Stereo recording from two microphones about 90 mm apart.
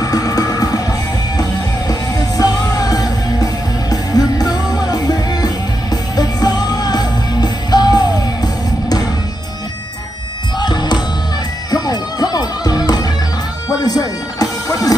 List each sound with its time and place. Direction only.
0.0 s music: 45° left (ahead or behind)
10.6 s music: 55° left (ahead or behind)